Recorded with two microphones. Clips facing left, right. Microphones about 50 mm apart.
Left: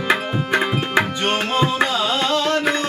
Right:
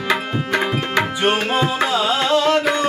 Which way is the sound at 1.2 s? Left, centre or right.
Centre.